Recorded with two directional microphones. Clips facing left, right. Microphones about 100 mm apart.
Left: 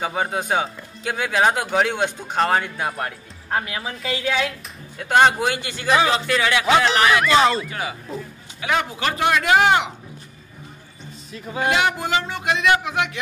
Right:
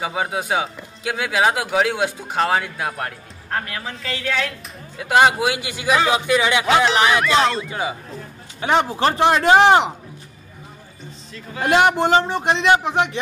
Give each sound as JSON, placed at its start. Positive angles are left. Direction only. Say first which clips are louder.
{"t": 0.0, "sound": "speech", "louder": "even", "side_deg": -5}
{"t": 4.9, "sound": "a man's voice", "louder": "right 1 dB", "side_deg": -5}
{"t": 6.7, "sound": "speech", "louder": "even", "side_deg": 0}
{"t": 7.0, "sound": "a man's voice", "louder": "even", "side_deg": -15}
{"t": 7.2, "sound": "speech", "louder": "left 1 dB", "side_deg": 0}
{"t": 8.5, "sound": "speech", "louder": "right 5 dB", "side_deg": -30}
{"t": 11.6, "sound": "speech", "louder": "right 5 dB", "side_deg": -40}